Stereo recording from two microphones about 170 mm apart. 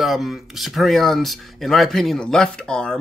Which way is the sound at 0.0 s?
Centre (ahead or behind).